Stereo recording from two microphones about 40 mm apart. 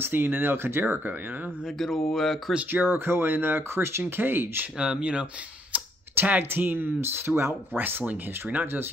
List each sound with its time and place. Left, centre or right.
0.0 s speech: right
0.8 s speech: right
1.8 s speech: centre
2.7 s speech: right
4.0 s speech: right
4.7 s speech: right
6.2 s speech: right
7.0 s speech: right
8.0 s speech: right